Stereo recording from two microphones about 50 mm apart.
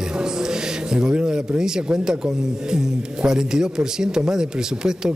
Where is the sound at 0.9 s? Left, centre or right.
Centre.